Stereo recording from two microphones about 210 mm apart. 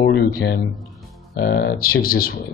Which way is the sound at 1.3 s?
50° left (ahead or behind).